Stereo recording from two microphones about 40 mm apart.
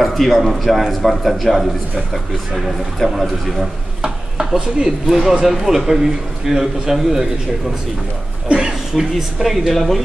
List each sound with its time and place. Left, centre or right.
0.0 s a man's voice: centre
4.6 s speech: centre
5.0 s a man's voice: centre
8.5 s a sound: centre
9.4 s a man's voice: centre